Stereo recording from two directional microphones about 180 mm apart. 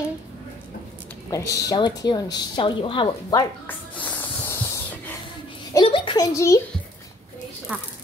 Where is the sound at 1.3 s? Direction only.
20° left (ahead or behind).